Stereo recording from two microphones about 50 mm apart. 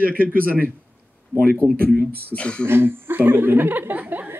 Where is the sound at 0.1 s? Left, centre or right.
Left.